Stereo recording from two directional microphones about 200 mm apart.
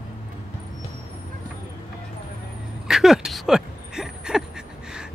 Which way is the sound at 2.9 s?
Centre (ahead or behind).